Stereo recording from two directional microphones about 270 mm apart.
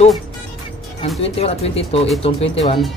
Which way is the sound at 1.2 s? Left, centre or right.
Left.